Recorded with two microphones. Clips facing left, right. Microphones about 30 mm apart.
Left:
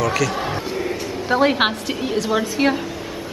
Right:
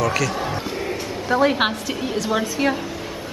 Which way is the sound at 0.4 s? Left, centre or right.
Centre.